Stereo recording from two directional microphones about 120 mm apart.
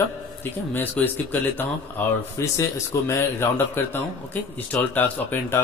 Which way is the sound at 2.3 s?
25° left (ahead or behind).